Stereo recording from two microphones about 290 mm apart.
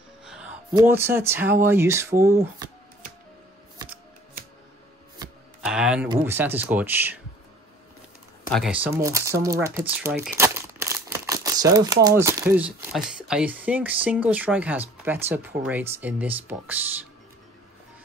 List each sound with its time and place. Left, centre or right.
0.2 s a sound: centre
0.7 s speech: centre
5.7 s speech: centre
8.5 s speech: centre